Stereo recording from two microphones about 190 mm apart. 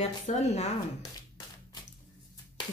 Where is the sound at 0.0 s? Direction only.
35° left (ahead or behind).